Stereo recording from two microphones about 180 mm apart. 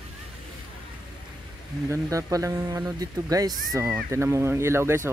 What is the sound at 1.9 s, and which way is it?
Speech, 15° right (ahead or behind).